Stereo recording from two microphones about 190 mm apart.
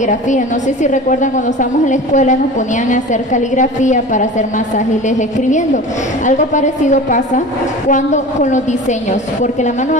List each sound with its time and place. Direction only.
0.0 s a woman's voice: 40° left (ahead or behind)
6.2 s a woman's voice: 40° left (ahead or behind)